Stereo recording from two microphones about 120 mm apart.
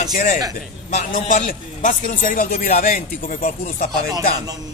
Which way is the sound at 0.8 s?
90° left.